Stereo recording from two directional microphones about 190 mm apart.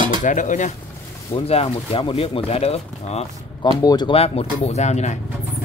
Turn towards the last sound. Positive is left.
turn(degrees=35)  # may be behind; listen again after turning